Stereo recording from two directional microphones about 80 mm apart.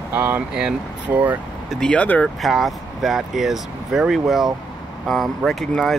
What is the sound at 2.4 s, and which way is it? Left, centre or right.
Speech, centre.